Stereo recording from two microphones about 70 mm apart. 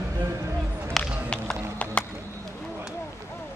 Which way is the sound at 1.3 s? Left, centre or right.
Centre.